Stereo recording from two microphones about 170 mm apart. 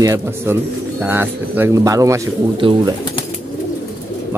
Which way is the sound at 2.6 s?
30° right (ahead or behind).